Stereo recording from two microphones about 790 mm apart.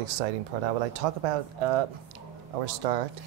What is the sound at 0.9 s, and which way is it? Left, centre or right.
Speech, right.